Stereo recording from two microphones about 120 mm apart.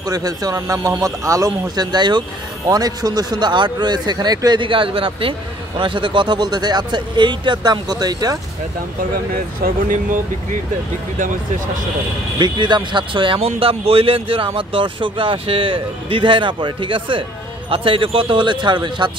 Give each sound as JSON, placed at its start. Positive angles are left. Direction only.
{"t": 0.0, "sound": "speech", "side_deg": -30}
{"t": 12.4, "sound": "speech", "side_deg": -40}